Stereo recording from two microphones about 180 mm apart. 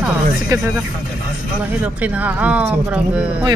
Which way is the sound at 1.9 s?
10° right (ahead or behind).